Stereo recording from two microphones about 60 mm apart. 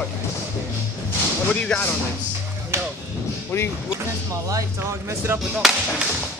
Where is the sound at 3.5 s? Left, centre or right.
Left.